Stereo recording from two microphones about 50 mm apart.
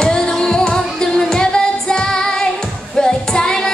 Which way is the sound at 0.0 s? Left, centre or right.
Centre.